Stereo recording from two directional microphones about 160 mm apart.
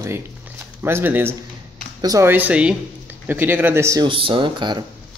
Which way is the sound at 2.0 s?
20° right (ahead or behind).